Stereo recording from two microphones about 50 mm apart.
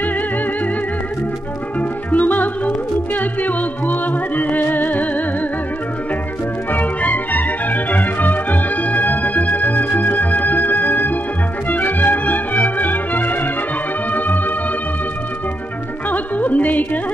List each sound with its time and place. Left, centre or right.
1.8 s music: left
6.7 s music: left
14.1 s organ: left
16.1 s music: left